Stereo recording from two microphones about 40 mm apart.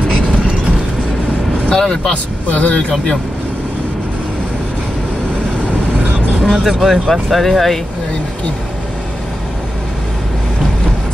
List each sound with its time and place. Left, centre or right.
1.7 s speech: centre
2.5 s speech: left
6.5 s speech: centre